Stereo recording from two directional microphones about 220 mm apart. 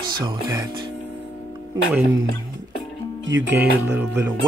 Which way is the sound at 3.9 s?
10° right (ahead or behind).